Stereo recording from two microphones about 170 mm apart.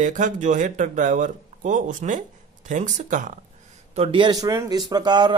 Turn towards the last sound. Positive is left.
turn(degrees=-25)  # may be behind; listen again after turning